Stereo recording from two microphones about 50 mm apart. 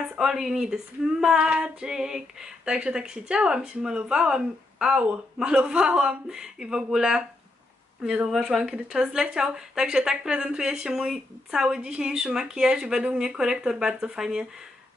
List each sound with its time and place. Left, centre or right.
0.2 s a woman's voice: centre